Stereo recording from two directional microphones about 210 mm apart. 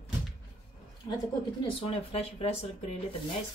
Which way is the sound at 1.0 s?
20° left (ahead or behind).